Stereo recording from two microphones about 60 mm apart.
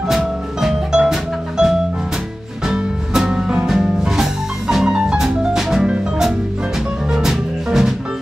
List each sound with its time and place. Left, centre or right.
0.1 s music: centre